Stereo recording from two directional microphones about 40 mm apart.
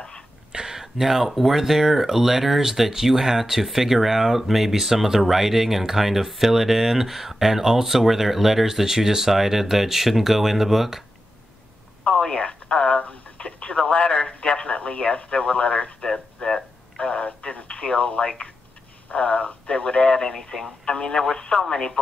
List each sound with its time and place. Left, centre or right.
0.5 s speech: centre
12.0 s telephone: left
13.4 s speech: left
16.0 s radio: centre
17.0 s speech: left